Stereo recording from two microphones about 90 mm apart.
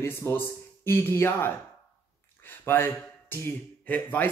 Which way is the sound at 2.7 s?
25° left (ahead or behind).